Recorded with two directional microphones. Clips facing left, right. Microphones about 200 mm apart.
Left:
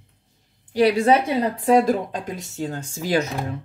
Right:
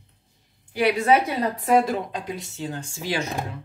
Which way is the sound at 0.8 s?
30° left (ahead or behind).